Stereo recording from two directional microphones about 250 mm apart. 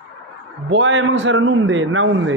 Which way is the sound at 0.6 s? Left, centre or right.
Right.